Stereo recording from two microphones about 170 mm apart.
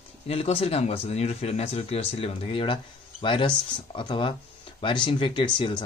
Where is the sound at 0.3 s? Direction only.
35° left (ahead or behind).